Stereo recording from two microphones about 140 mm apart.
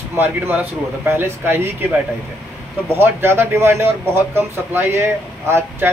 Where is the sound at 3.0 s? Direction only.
15° right (ahead or behind).